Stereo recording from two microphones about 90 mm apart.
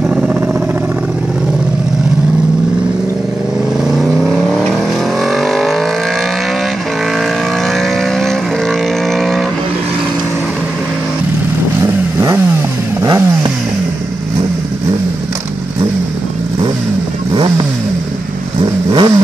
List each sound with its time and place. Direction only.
5.3 s vehicle: centre (ahead or behind)
11.8 s vehicle: 35° right (ahead or behind)
17.3 s vehicle: 55° right (ahead or behind)
18.9 s vehicle: 60° right (ahead or behind)